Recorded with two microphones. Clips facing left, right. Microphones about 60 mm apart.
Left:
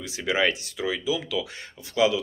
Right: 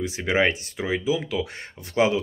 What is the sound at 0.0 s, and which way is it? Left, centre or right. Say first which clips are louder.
Speech: right 2 dB; right.